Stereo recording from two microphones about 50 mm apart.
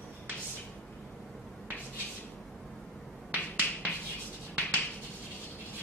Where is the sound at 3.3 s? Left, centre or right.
Right.